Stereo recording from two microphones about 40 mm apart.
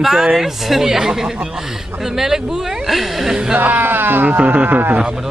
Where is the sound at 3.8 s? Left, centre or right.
Right.